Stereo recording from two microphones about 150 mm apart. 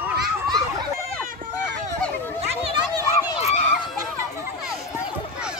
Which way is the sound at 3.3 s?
50° left (ahead or behind).